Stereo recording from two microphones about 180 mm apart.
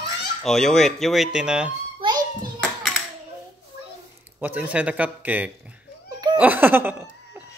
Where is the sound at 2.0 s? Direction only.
25° right (ahead or behind).